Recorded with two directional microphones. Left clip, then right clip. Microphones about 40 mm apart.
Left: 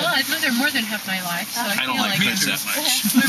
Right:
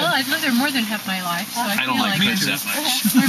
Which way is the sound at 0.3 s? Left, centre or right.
Left.